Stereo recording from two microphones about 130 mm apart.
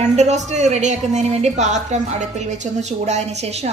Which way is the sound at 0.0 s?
60° right (ahead or behind).